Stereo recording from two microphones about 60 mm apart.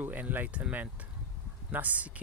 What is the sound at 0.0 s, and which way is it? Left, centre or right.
Speech, right.